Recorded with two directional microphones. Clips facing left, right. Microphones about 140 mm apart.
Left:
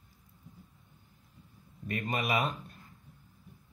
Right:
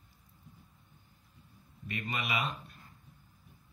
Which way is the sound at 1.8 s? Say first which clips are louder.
Left 5 dB; 45° left (ahead or behind).